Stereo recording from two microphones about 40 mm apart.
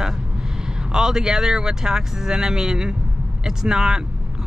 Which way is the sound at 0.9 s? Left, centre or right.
Centre.